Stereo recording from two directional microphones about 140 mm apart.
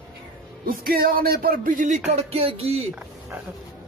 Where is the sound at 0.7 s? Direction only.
90° right; by 2.0 s 70° right (ahead or behind).